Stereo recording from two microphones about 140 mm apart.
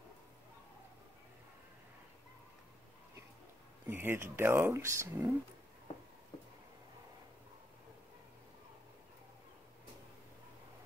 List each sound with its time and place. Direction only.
3.8 s speech: 15° right (ahead or behind)